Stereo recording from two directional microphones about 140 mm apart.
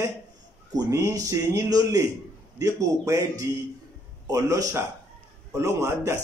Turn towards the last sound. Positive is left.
turn(degrees=-20)  # may be behind; listen again after turning